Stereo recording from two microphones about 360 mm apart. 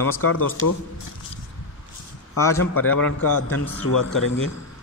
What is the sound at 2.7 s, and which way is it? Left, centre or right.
Speech, left.